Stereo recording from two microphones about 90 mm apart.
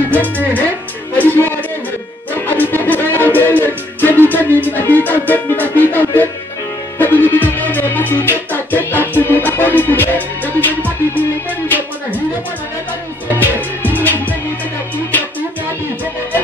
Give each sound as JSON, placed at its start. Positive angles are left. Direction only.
{"t": 1.1, "sound": "music", "side_deg": 20}
{"t": 13.4, "sound": "music", "side_deg": 20}